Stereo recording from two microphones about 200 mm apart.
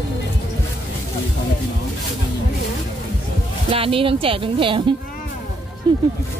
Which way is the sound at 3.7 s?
25° right (ahead or behind).